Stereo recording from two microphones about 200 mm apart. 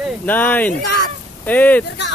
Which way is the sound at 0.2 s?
10° left (ahead or behind).